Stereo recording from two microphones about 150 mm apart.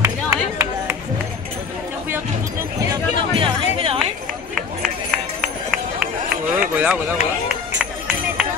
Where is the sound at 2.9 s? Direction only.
35° right (ahead or behind).